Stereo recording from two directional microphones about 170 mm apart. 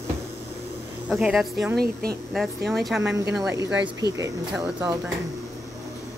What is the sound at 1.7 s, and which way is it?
Speech, 65° right (ahead or behind).